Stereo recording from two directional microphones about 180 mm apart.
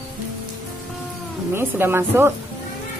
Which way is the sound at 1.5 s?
10° right (ahead or behind).